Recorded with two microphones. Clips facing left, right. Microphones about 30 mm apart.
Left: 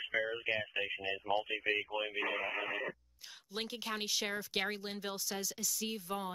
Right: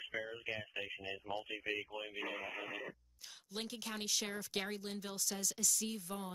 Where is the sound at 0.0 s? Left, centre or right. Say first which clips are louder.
Left 7 dB; left.